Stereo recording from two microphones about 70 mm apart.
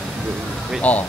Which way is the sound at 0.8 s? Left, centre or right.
Left.